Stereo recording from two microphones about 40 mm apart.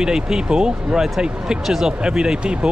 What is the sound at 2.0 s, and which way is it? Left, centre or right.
Speech, centre.